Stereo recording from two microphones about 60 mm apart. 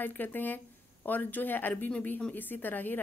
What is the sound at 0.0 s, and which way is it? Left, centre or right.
A woman's voice, left.